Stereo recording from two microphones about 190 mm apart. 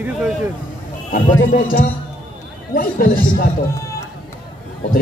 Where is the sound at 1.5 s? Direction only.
50° left (ahead or behind).